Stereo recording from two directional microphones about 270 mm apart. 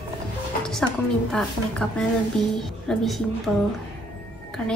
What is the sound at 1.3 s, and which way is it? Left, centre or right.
A woman's voice, centre.